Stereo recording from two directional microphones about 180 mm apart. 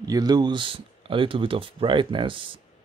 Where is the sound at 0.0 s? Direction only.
20° right (ahead or behind).